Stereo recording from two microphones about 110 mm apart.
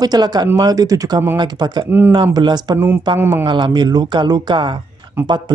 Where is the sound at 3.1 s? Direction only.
20° right (ahead or behind).